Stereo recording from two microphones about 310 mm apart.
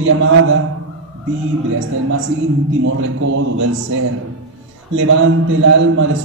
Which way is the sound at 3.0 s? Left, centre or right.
Right.